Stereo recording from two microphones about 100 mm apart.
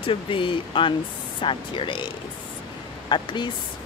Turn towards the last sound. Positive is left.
turn(degrees=50)  # may be behind; listen again after turning